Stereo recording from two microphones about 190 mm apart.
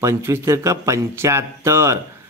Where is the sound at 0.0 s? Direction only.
15° right (ahead or behind).